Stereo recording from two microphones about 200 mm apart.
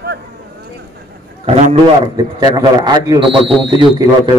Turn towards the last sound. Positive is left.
turn(degrees=-25)  # may be behind; listen again after turning